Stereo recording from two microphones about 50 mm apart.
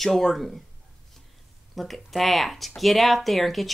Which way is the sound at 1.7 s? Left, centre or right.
Centre.